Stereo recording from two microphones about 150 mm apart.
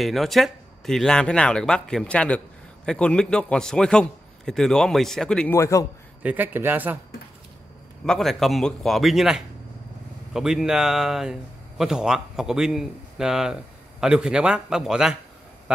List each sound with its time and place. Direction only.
0.0 s speech: centre (ahead or behind)
5.5 s a man's voice: 20° left (ahead or behind)
6.2 s speech: 10° right (ahead or behind)
8.0 s speech: 5° left (ahead or behind)